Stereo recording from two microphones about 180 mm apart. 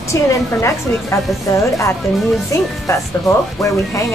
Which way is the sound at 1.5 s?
15° left (ahead or behind).